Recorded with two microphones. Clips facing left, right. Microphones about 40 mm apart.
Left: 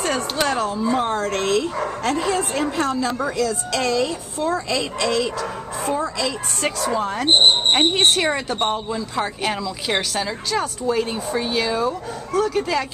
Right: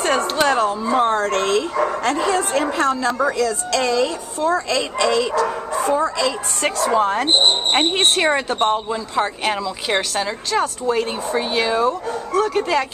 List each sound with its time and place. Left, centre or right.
0.4 s a woman's voice: centre
4.9 s speech: right
5.2 s a woman's voice: centre
6.9 s a woman's voice: right